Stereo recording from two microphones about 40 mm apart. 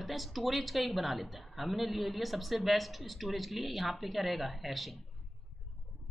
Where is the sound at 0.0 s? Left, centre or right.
Centre.